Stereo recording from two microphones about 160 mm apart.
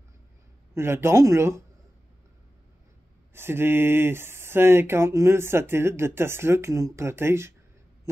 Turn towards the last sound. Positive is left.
turn(degrees=-15)  # may be behind; listen again after turning